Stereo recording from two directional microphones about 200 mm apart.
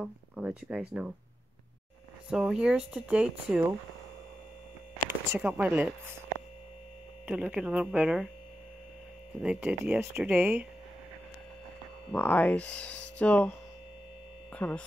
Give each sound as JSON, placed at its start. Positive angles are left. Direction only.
{"t": 0.0, "sound": "speech", "side_deg": -5}
{"t": 2.2, "sound": "speech", "side_deg": -5}
{"t": 5.3, "sound": "speech", "side_deg": -10}
{"t": 7.2, "sound": "speech", "side_deg": -5}
{"t": 9.4, "sound": "speech", "side_deg": -5}
{"t": 12.1, "sound": "speech", "side_deg": 10}
{"t": 14.5, "sound": "hum", "side_deg": 10}